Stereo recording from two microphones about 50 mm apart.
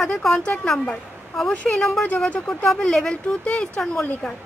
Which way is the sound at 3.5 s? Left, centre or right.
Left.